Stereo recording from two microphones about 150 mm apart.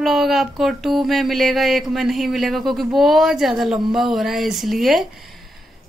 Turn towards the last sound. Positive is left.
turn(degrees=0)  # may be behind; listen again after turning